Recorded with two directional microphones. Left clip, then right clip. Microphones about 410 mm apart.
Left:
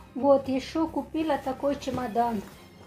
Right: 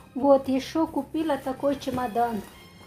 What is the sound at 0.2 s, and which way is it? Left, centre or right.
Speech, centre.